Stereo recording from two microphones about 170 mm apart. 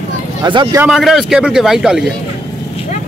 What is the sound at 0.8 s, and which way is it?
A man's voice, centre (ahead or behind).